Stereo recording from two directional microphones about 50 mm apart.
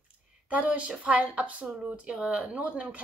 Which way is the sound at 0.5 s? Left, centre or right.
Right.